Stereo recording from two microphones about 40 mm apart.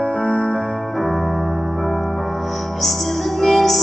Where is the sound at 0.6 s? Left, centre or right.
Centre.